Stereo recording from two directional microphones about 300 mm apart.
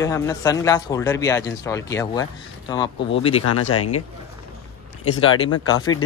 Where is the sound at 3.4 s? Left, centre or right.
Left.